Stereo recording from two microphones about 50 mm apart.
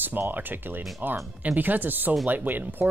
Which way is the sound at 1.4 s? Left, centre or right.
Right.